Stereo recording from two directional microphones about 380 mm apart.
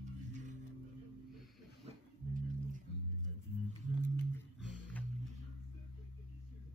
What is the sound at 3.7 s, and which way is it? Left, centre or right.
Music, centre.